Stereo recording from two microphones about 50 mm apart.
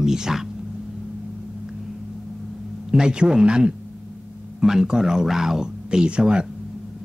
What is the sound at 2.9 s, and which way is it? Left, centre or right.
Speech, centre.